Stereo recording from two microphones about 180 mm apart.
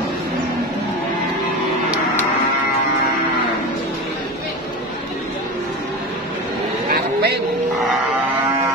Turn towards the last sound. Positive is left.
turn(degrees=-65)  # may be behind; listen again after turning